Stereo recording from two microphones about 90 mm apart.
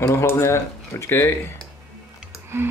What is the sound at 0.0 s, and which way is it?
Speech, 30° left (ahead or behind).